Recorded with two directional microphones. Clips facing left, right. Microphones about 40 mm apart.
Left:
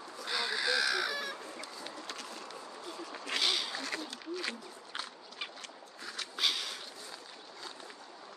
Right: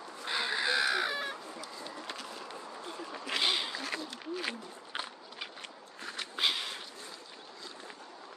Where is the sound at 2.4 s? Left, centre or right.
Right.